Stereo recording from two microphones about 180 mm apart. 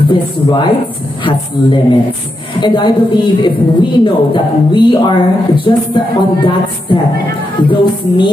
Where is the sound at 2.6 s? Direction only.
25° left (ahead or behind).